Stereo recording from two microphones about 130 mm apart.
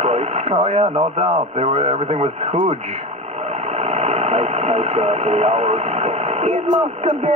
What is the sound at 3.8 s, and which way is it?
Radio, 55° right (ahead or behind).